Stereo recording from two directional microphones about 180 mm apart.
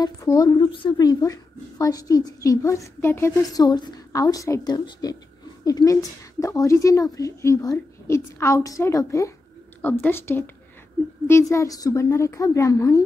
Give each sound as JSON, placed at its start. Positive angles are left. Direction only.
{"t": 0.0, "sound": "a woman's voice", "side_deg": 20}
{"t": 11.5, "sound": "speech", "side_deg": 20}